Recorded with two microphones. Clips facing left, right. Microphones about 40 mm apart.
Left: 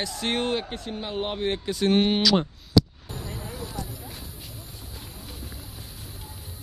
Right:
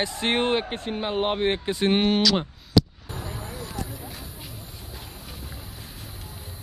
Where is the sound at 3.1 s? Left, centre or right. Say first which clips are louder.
Right 1 dB; right.